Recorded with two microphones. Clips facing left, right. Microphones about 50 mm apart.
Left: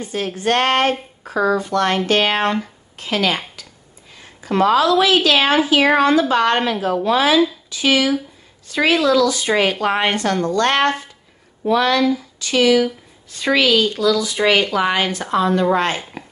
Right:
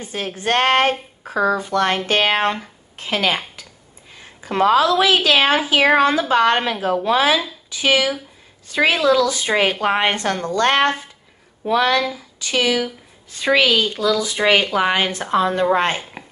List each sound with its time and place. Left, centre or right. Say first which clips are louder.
0.0 s a woman's voice: left 3 dB; right
4.2 s a sound: left 1 dB; right
5.0 s a woman's voice: even; right